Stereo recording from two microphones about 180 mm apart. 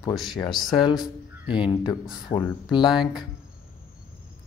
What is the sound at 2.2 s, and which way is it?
Speech, 25° left (ahead or behind).